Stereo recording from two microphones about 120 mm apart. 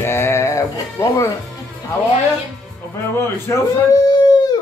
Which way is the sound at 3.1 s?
20° left (ahead or behind).